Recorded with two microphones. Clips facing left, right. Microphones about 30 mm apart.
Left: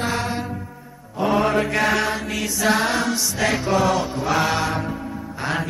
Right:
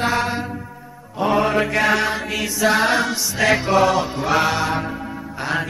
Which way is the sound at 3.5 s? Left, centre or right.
Right.